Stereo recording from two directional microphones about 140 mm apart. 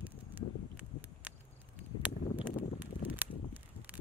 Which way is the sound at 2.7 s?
10° right (ahead or behind).